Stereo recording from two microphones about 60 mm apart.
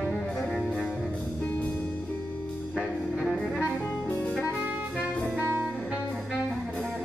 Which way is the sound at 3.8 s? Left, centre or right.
Centre.